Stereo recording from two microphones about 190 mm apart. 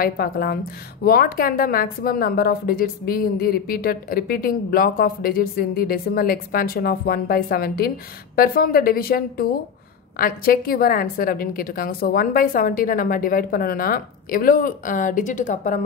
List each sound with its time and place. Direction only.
0.0 s a woman's voice: 55° left (ahead or behind)